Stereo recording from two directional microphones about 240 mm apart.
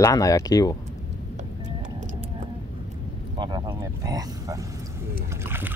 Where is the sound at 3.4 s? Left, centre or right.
Centre.